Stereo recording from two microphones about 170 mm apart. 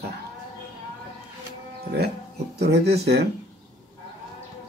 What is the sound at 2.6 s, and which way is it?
Speech, 75° right (ahead or behind).